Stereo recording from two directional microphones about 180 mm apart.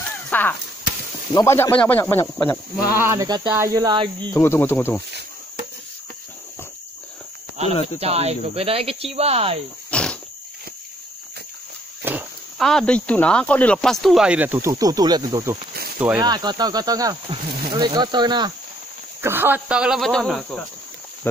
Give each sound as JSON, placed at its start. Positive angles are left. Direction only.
{"t": 0.3, "sound": "a sound", "side_deg": 10}
{"t": 1.3, "sound": "speech", "side_deg": 15}
{"t": 2.9, "sound": "speech", "side_deg": -15}
{"t": 4.3, "sound": "speech", "side_deg": 15}
{"t": 7.7, "sound": "speech", "side_deg": 35}
{"t": 8.0, "sound": "speech", "side_deg": -35}
{"t": 9.8, "sound": "cricket", "side_deg": 5}
{"t": 12.0, "sound": "a sound", "side_deg": -10}
{"t": 12.5, "sound": "speech", "side_deg": 0}
{"t": 19.2, "sound": "speech", "side_deg": -10}